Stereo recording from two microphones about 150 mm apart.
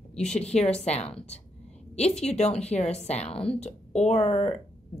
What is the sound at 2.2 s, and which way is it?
Speech, 45° left (ahead or behind).